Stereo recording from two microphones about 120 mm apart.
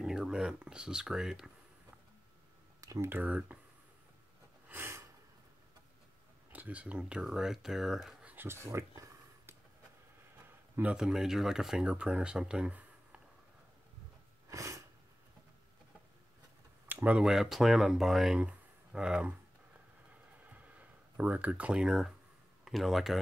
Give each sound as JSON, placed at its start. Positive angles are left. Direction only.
{"t": 0.0, "sound": "speech", "side_deg": -5}
{"t": 2.8, "sound": "a sound", "side_deg": -30}
{"t": 3.1, "sound": "speech", "side_deg": -10}
{"t": 4.6, "sound": "snort", "side_deg": -20}
{"t": 6.5, "sound": "speech", "side_deg": -10}
{"t": 8.3, "sound": "a sound", "side_deg": -20}
{"t": 10.4, "sound": "speech", "side_deg": -10}
{"t": 14.5, "sound": "sneeze", "side_deg": -25}
{"t": 16.8, "sound": "speech", "side_deg": -15}
{"t": 20.1, "sound": "a sound", "side_deg": -10}
{"t": 22.7, "sound": "speech", "side_deg": 0}